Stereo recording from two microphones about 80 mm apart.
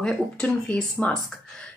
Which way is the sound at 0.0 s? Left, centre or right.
Centre.